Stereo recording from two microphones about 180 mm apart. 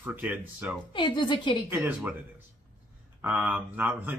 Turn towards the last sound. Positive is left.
turn(degrees=-10)  # may be behind; listen again after turning